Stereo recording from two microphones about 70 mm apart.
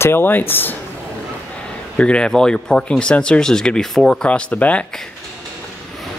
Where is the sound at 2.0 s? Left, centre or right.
Centre.